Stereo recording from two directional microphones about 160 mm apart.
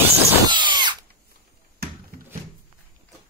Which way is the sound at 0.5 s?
30° right (ahead or behind).